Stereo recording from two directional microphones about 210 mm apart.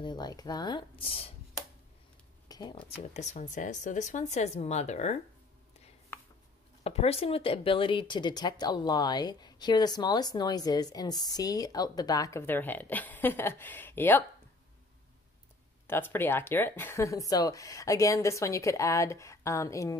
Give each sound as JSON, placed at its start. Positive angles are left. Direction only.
{"t": 0.0, "sound": "speech", "side_deg": 20}
{"t": 2.4, "sound": "a sound", "side_deg": 20}
{"t": 3.0, "sound": "speech", "side_deg": 35}
{"t": 6.8, "sound": "speech", "side_deg": 30}
{"t": 15.9, "sound": "speech", "side_deg": 10}